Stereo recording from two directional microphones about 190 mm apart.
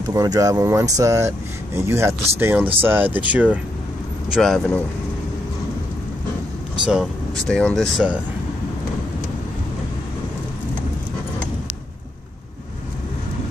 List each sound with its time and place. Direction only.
0.1 s speech: 20° right (ahead or behind); by 4.8 s 5° left (ahead or behind)
6.9 s speech: centre (ahead or behind)